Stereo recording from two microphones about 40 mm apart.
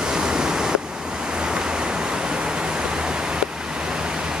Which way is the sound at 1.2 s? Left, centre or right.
Centre.